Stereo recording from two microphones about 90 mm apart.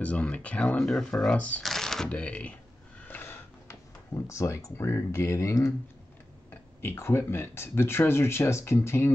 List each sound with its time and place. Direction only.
0.0 s speech: 15° left (ahead or behind)
0.7 s speech: centre (ahead or behind)
1.6 s typewriter: 5° left (ahead or behind)
2.0 s speech: 15° left (ahead or behind)
3.0 s a sound: 25° left (ahead or behind)
6.5 s speech: 25° left (ahead or behind)